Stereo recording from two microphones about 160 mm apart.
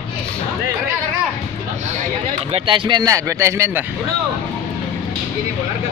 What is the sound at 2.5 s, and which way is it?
Speech, 35° right (ahead or behind).